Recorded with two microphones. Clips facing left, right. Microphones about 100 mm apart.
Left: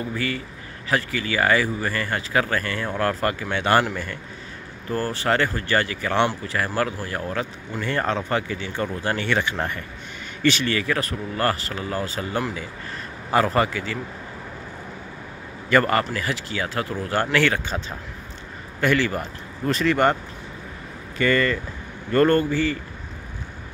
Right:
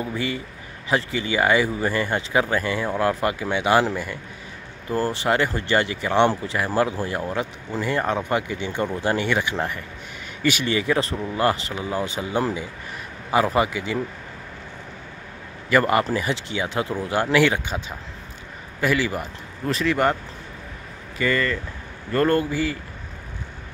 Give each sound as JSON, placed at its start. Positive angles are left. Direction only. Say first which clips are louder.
{"t": 0.0, "sound": "a man's voice", "louder": "right 1 dB", "side_deg": -20}
{"t": 15.7, "sound": "speech", "louder": "right 1 dB", "side_deg": -10}
{"t": 21.2, "sound": "speech", "louder": "left 2 dB", "side_deg": 0}